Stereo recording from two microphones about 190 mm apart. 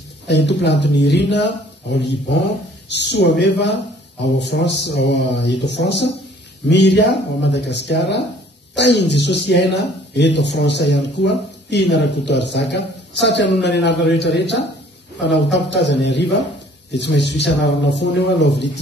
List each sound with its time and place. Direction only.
0.3 s speech: 65° left (ahead or behind)